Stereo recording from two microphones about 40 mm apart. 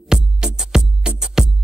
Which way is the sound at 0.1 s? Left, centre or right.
Centre.